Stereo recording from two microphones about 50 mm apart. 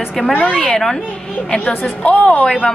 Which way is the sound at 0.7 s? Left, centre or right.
Centre.